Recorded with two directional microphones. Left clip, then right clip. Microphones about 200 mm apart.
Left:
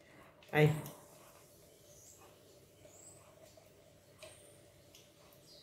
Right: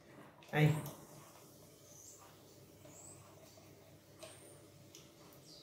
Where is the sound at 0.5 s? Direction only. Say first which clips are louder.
Left 5 dB; 50° left (ahead or behind).